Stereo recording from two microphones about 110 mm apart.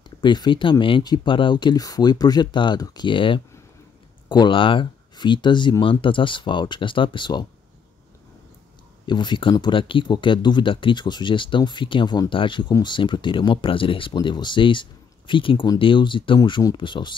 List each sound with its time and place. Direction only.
0.2 s speech: 45° left (ahead or behind)
9.0 s speech: 45° left (ahead or behind)